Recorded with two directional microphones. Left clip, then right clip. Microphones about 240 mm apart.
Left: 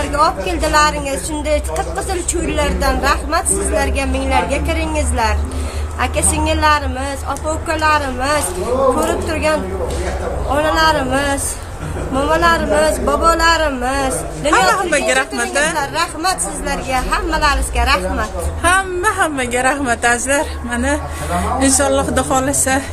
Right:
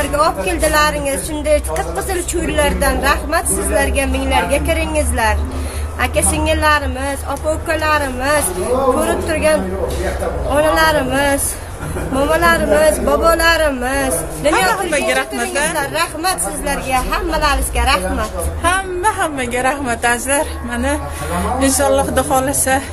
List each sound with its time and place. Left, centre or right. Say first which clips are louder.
0.0 s a woman's voice: even; centre
14.7 s speech: left 1 dB; centre
15.7 s a woman's voice: even; centre
18.6 s a woman's voice: left 2 dB; centre